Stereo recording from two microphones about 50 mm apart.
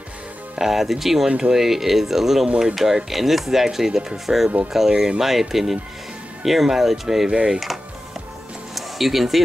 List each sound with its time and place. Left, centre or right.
0.6 s speech: centre
7.2 s speech: centre
8.7 s music: centre